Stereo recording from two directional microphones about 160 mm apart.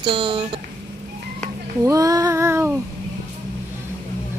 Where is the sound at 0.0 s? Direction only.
30° right (ahead or behind).